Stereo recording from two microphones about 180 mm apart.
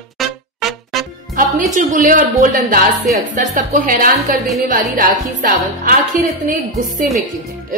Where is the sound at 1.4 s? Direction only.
45° right (ahead or behind).